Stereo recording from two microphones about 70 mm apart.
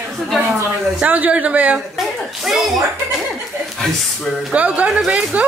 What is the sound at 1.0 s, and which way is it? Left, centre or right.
Speech, right.